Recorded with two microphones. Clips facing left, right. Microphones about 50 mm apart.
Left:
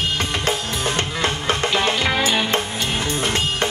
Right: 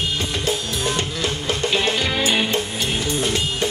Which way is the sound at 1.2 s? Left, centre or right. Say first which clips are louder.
Left 2 dB; left.